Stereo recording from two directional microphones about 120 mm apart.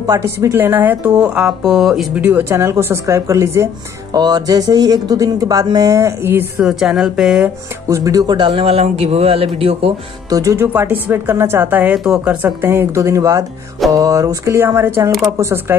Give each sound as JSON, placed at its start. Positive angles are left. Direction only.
{"t": 0.0, "sound": "a woman's voice", "side_deg": -25}
{"t": 2.2, "sound": "a woman's voice", "side_deg": -20}
{"t": 6.6, "sound": "speech", "side_deg": -5}
{"t": 7.9, "sound": "a woman's voice", "side_deg": -30}
{"t": 8.4, "sound": "speech", "side_deg": -45}
{"t": 10.3, "sound": "a woman's voice", "side_deg": -25}
{"t": 10.7, "sound": "a woman's voice", "side_deg": -15}
{"t": 12.4, "sound": "a woman's voice", "side_deg": -20}